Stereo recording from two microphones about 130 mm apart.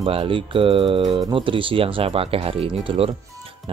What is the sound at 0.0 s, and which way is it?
Speech, 45° right (ahead or behind).